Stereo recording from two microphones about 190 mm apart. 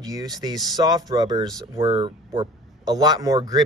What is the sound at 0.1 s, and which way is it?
Speech, 20° right (ahead or behind).